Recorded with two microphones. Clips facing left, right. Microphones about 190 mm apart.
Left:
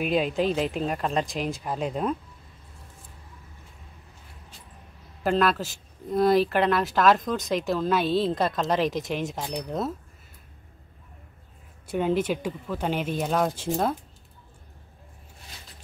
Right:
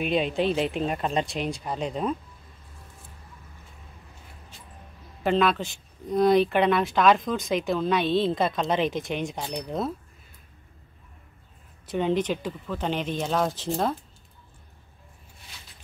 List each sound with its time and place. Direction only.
0.0 s speech: 5° left (ahead or behind)
5.2 s speech: centre (ahead or behind)
11.9 s speech: 5° left (ahead or behind)